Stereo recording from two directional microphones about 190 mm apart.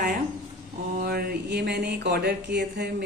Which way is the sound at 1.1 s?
60° right (ahead or behind).